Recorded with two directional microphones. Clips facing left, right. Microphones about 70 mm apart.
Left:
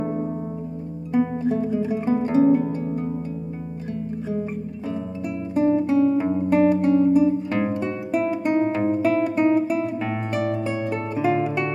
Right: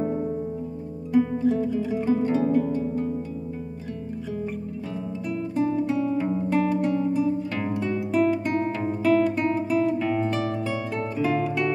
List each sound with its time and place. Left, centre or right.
1.1 s music: left
4.3 s guitar: left